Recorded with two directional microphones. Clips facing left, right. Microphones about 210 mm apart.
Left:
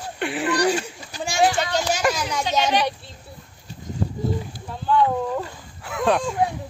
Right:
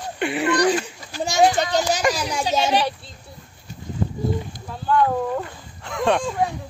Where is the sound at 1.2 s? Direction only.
40° right (ahead or behind).